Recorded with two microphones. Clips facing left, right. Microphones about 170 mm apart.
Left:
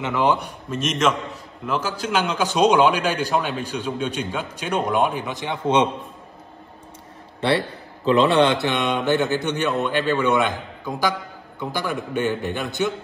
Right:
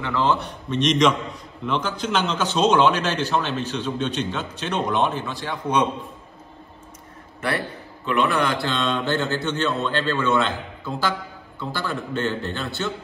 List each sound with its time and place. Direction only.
0.0 s a man's voice: 15° left (ahead or behind)
7.4 s a man's voice: 30° left (ahead or behind)